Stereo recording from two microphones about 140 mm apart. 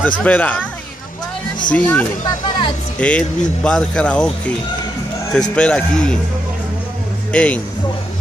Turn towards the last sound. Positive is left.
turn(degrees=10)  # may be behind; listen again after turning